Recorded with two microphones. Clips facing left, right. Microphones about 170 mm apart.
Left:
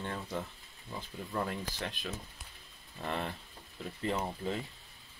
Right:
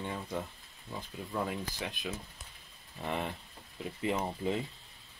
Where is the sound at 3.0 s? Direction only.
5° right (ahead or behind).